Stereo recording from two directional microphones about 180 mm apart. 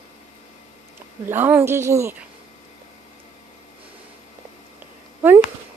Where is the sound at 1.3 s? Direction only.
10° right (ahead or behind).